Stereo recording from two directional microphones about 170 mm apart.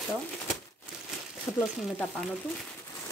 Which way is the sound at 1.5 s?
15° left (ahead or behind).